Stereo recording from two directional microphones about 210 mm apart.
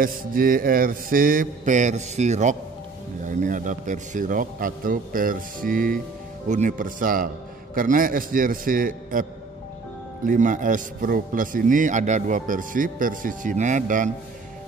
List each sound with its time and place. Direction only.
0.0 s a man's voice: 40° right (ahead or behind)
10.2 s a man's voice: 40° right (ahead or behind)